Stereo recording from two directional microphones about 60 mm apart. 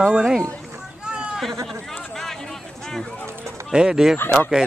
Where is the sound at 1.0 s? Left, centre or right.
Centre.